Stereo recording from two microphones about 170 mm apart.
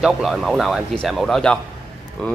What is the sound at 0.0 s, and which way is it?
Speech, centre (ahead or behind).